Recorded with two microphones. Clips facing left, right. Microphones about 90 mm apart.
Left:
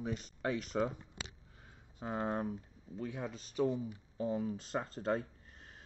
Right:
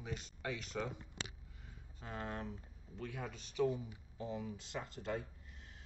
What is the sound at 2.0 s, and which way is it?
Speech, 30° left (ahead or behind).